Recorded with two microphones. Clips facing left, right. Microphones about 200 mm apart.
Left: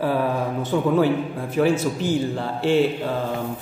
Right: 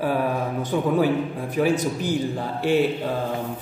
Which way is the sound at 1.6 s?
10° right (ahead or behind).